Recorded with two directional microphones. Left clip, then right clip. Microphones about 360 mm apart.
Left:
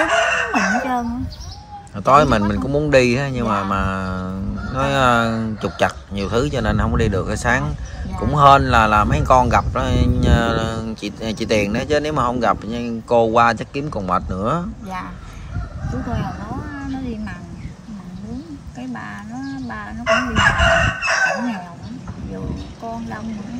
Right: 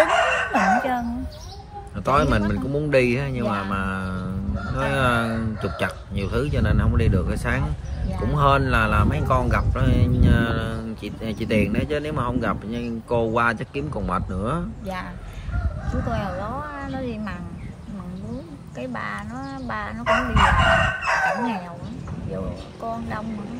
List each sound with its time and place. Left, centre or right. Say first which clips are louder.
0.1 s chicken: left 3 dB; centre
2.0 s speech: left 7 dB; centre
20.1 s speech: left 3 dB; centre